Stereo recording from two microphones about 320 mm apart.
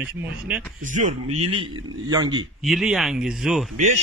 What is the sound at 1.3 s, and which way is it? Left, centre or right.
Speech, right.